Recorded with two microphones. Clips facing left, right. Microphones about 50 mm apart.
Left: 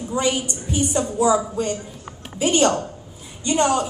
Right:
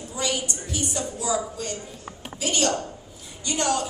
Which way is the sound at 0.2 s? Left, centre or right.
Left.